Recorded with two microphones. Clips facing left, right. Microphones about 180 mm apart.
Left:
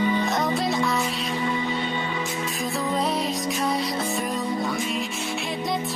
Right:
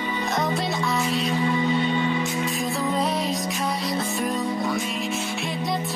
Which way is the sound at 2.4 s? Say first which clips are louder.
Right 2 dB; centre (ahead or behind).